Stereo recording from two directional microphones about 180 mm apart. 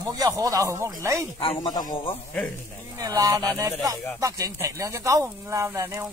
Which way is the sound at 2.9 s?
20° right (ahead or behind).